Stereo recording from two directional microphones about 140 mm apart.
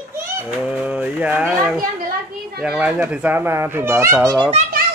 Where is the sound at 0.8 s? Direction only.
10° right (ahead or behind); by 4.5 s 25° right (ahead or behind).